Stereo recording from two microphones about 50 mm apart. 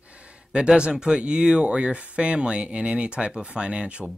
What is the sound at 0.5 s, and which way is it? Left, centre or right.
Speech, centre.